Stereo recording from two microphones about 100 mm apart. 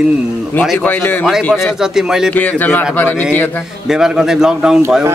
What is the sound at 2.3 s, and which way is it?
A man's voice, 15° left (ahead or behind).